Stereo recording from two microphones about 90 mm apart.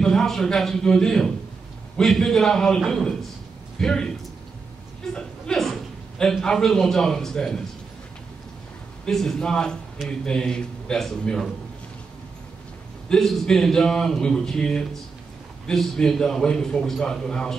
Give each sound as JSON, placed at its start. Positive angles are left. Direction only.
{"t": 0.0, "sound": "a man's voice", "side_deg": 5}
{"t": 5.1, "sound": "a man's voice", "side_deg": 5}
{"t": 9.0, "sound": "a man's voice", "side_deg": 5}
{"t": 13.1, "sound": "a man's voice", "side_deg": 5}